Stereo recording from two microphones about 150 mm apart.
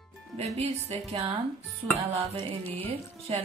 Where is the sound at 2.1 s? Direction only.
35° right (ahead or behind).